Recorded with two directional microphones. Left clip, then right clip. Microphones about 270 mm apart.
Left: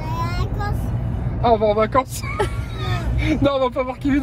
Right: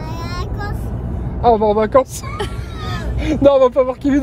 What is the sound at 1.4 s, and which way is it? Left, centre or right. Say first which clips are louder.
Speech: right 3 dB; right.